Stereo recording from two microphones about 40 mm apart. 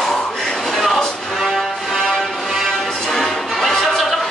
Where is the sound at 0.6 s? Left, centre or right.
Centre.